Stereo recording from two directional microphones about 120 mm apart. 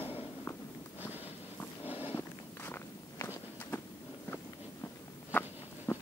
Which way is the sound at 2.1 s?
20° left (ahead or behind).